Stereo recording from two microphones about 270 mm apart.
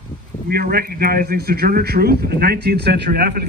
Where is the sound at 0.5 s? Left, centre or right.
Right.